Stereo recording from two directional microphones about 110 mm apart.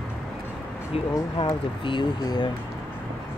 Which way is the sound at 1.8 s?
50° left (ahead or behind).